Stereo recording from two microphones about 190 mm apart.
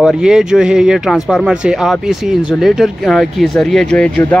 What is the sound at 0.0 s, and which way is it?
Speech, 5° right (ahead or behind).